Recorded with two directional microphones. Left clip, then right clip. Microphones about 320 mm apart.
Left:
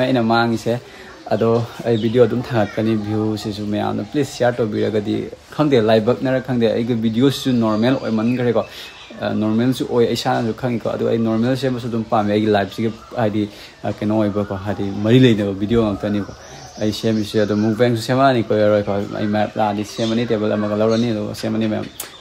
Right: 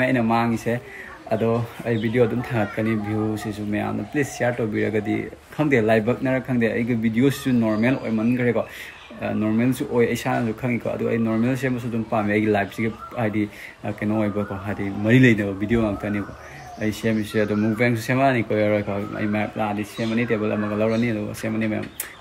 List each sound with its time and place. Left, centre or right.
0.0 s speech: centre